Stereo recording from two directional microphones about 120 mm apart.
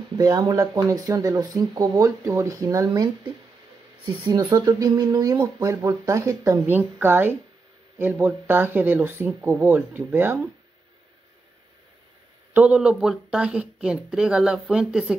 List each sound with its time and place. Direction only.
0.1 s speech: 35° right (ahead or behind)
4.3 s speech: 35° right (ahead or behind); by 10.5 s 15° right (ahead or behind)
12.5 s speech: 10° right (ahead or behind)